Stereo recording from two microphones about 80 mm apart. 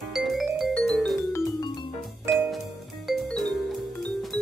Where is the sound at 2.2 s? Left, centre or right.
Centre.